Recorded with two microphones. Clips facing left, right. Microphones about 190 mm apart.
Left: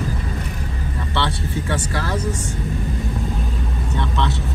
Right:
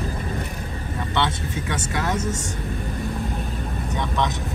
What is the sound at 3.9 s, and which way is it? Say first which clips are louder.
Vehicle: left 1 dB; 15° right (ahead or behind).